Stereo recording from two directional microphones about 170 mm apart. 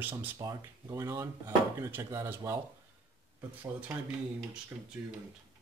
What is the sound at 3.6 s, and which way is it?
Speech, 10° right (ahead or behind).